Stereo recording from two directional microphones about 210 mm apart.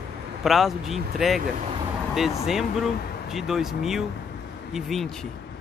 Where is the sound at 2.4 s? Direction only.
Centre (ahead or behind).